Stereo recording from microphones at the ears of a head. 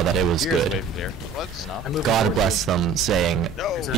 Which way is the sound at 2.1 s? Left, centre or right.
Right.